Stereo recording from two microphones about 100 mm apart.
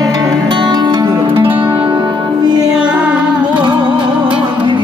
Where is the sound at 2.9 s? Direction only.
10° right (ahead or behind).